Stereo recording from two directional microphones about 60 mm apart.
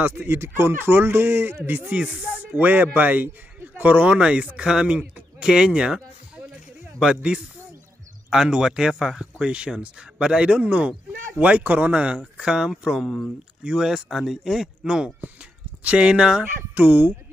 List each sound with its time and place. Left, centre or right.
0.0 s speech: right; by 5.9 s centre
7.2 s speech: centre
13.0 s speech: centre
13.7 s speech: centre
16.7 s speech: right